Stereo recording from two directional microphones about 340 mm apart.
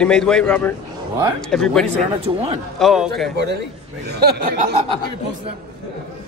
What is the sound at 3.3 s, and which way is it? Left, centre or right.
A man's voice, right.